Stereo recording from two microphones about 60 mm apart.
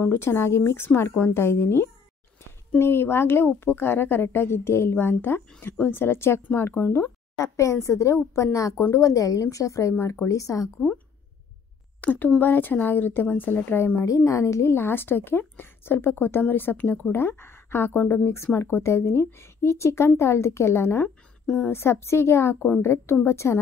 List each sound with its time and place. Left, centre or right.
0.0 s a woman's voice: left
7.3 s speech: left
8.9 s a woman's voice: left
12.0 s a woman's voice: left
14.0 s a woman's voice: left
17.1 s speech: left